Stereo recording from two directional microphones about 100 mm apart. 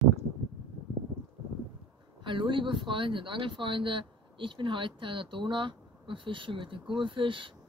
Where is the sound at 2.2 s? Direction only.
55° right (ahead or behind).